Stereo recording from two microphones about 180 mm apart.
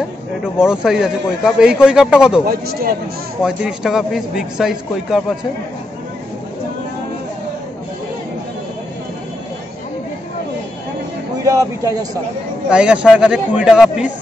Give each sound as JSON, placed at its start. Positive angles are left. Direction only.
{"t": 0.6, "sound": "a man's voice", "side_deg": -5}
{"t": 2.4, "sound": "a man's voice", "side_deg": -55}
{"t": 3.4, "sound": "a man's voice", "side_deg": -5}
{"t": 11.4, "sound": "speech", "side_deg": -20}
{"t": 12.6, "sound": "a man's voice", "side_deg": -5}